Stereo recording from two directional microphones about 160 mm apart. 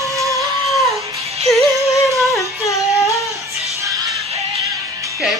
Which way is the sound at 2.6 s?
20° left (ahead or behind).